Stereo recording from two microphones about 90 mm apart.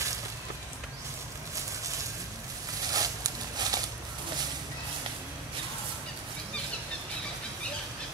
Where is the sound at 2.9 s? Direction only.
45° right (ahead or behind).